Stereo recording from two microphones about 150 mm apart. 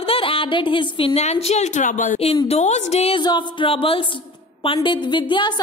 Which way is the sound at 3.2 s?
30° left (ahead or behind).